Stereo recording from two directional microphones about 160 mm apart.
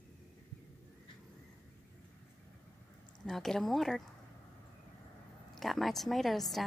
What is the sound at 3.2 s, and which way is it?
Speech, centre (ahead or behind).